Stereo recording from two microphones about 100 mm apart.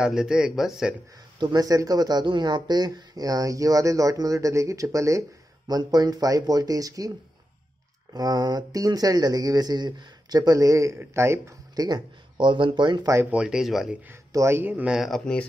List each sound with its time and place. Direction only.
0.0 s speech: 5° right (ahead or behind)
1.4 s speech: 40° right (ahead or behind)
11.7 s speech: 40° right (ahead or behind)
13.0 s speech: 30° right (ahead or behind)
13.3 s speech: 5° right (ahead or behind)
14.3 s speech: 25° right (ahead or behind)
14.7 s speech: 15° right (ahead or behind)
15.0 s speech: centre (ahead or behind)